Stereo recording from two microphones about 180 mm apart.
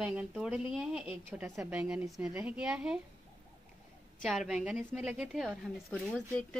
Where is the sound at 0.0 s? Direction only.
5° right (ahead or behind).